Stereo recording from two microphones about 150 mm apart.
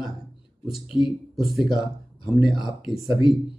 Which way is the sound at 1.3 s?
Centre (ahead or behind).